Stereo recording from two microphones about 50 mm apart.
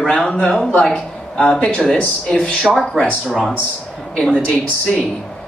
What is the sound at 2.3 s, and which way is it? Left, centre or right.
Speech, centre.